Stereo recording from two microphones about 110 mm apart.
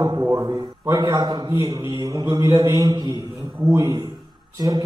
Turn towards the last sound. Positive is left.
turn(degrees=-35)  # may be behind; listen again after turning